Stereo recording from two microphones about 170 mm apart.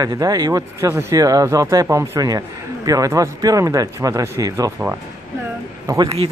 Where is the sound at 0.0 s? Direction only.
20° right (ahead or behind).